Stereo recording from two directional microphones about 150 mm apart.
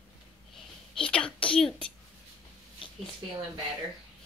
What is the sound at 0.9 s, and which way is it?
Speech, 5° left (ahead or behind).